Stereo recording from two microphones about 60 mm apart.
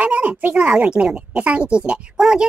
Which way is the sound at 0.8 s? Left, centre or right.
Centre.